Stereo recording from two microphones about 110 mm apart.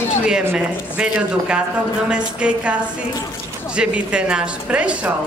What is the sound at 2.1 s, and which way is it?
Music, 10° right (ahead or behind).